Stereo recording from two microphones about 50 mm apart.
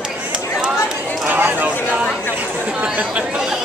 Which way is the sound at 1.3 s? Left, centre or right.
Right.